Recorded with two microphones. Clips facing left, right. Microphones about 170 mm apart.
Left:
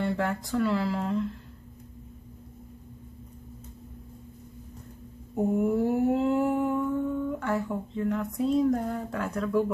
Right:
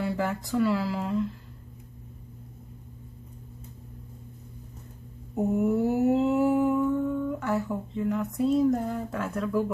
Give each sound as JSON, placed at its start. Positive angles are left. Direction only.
{"t": 0.0, "sound": "speech", "side_deg": 0}
{"t": 5.3, "sound": "mantra", "side_deg": -5}